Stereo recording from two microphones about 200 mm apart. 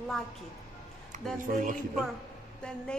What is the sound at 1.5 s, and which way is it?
Music, 45° right (ahead or behind).